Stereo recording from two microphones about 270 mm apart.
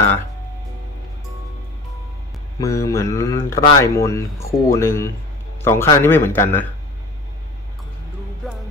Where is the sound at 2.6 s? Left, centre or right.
Centre.